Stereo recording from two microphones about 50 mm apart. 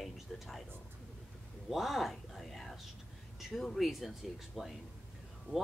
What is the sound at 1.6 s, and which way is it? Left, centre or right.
Speech, centre.